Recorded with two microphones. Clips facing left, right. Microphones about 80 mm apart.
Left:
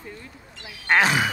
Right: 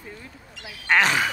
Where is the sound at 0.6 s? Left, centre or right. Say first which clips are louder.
Left 1 dB; centre.